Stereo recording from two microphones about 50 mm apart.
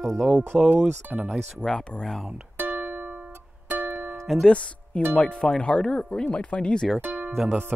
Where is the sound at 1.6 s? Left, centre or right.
Centre.